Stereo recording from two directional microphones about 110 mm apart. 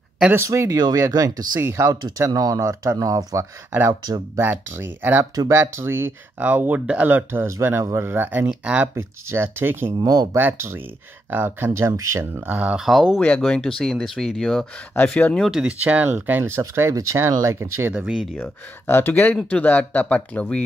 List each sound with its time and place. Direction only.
0.3 s speech: 25° right (ahead or behind)
1.6 s speech: 25° right (ahead or behind)
4.4 s speech: 20° right (ahead or behind)
5.3 s speech: 35° right (ahead or behind)
5.6 s speech: 25° right (ahead or behind)
8.8 s speech: 20° right (ahead or behind)
9.9 s speech: 35° right (ahead or behind)
10.3 s speech: 20° right (ahead or behind)
12.4 s speech: 10° right (ahead or behind)
13.2 s speech: 10° left (ahead or behind)
15.0 s speech: 15° left (ahead or behind)
15.5 s speech: 10° right (ahead or behind)
18.4 s speech: 20° left (ahead or behind)